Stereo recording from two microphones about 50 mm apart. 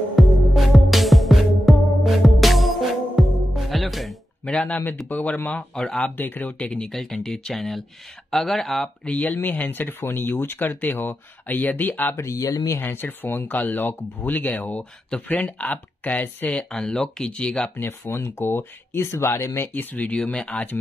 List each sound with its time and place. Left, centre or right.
0.1 s music: centre
5.0 s speech: left
6.1 s speech: left
6.8 s speech: centre
9.0 s speech: left
9.4 s speech: left
12.2 s speech: left
12.8 s speech: left
16.7 s speech: centre
17.8 s speech: left
18.9 s speech: left
19.7 s speech: left